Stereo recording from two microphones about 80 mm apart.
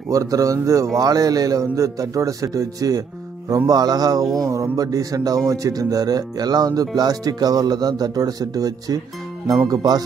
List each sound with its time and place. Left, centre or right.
0.1 s a man's voice: right
9.7 s music: right